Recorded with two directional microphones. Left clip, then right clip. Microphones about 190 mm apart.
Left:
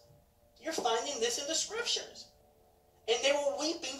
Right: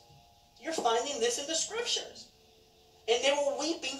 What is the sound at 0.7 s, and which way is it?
Speech, 5° left (ahead or behind).